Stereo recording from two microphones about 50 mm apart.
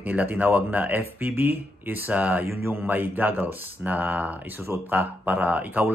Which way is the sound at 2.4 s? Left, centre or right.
Right.